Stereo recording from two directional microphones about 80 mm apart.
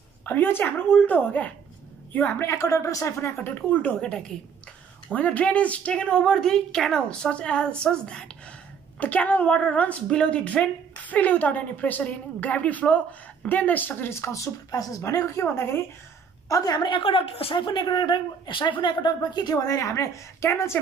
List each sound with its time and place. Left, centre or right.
0.2 s a woman's voice: left
2.3 s a woman's voice: left
14.2 s speech: left
16.4 s a woman's voice: left
16.7 s a woman's voice: left